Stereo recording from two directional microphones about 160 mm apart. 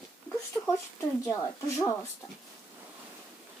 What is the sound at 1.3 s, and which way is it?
Speech, 15° left (ahead or behind).